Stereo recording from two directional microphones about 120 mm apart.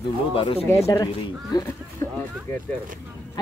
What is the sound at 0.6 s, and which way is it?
Speech, 25° left (ahead or behind).